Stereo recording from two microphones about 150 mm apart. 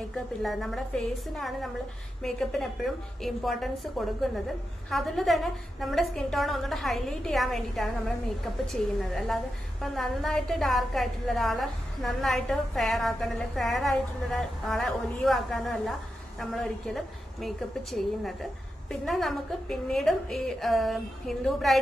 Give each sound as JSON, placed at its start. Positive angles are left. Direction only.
{"t": 0.4, "sound": "a woman's voice", "side_deg": 0}
{"t": 9.1, "sound": "a woman's voice", "side_deg": 0}